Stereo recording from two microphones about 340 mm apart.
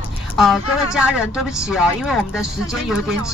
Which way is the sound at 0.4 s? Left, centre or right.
Centre.